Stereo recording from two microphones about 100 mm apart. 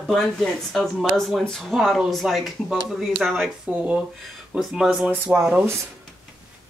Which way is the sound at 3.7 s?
10° right (ahead or behind).